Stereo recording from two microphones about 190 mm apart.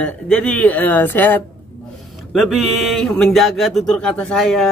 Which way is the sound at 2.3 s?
Centre (ahead or behind).